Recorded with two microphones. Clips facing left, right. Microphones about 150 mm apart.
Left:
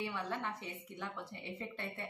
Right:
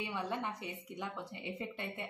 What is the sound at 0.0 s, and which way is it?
A woman's voice, 15° right (ahead or behind).